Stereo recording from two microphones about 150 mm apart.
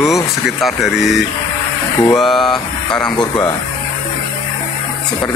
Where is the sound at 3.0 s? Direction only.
25° left (ahead or behind).